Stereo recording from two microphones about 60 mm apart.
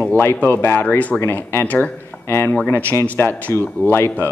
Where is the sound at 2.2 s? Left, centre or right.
Left.